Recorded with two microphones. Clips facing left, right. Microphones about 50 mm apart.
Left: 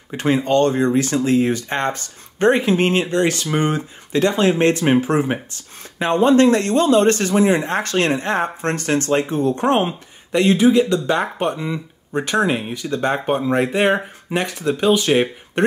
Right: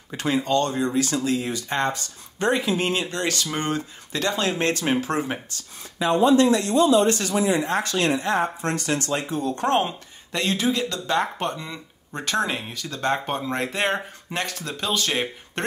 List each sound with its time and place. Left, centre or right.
0.1 s speech: left
3.1 s speech: left
5.9 s speech: left
9.6 s speech: left